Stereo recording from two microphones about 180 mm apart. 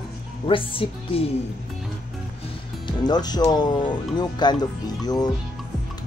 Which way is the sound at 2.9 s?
25° left (ahead or behind).